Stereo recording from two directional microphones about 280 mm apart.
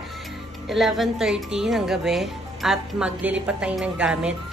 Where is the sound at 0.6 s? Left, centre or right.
Centre.